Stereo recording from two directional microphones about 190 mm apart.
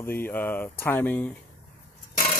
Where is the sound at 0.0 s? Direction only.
10° left (ahead or behind).